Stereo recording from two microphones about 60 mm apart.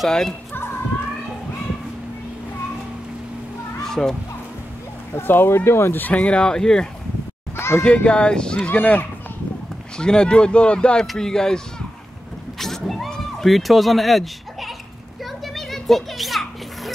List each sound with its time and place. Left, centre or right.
0.0 s speech: centre
3.8 s children playing: centre
5.1 s speech: left
5.9 s speech: left
7.5 s a sound: left
7.8 s speech: centre
8.6 s speech: left
9.9 s speech: centre
12.5 s a sound: centre
13.1 s speech: centre
15.4 s children playing: centre